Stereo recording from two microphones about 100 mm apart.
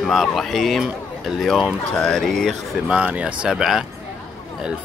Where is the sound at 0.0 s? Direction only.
Centre (ahead or behind).